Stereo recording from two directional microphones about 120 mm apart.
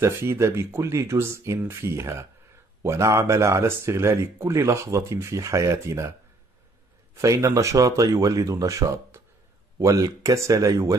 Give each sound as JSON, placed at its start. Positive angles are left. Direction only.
{"t": 0.0, "sound": "speech", "side_deg": -20}
{"t": 7.2, "sound": "speech", "side_deg": -25}